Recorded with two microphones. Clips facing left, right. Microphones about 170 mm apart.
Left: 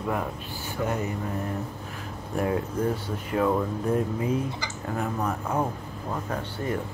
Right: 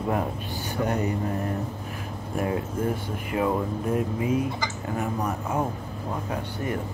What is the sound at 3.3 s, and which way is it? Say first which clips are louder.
Speech: left 1 dB; 15° right (ahead or behind).